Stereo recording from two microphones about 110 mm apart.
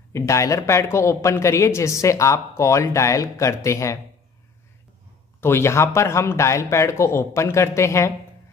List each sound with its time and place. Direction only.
0.1 s speech: 25° left (ahead or behind)
5.4 s speech: 25° left (ahead or behind)